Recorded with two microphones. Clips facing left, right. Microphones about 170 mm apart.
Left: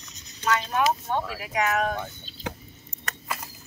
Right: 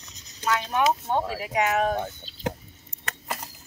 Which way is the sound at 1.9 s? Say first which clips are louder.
Right 4 dB; 40° right (ahead or behind).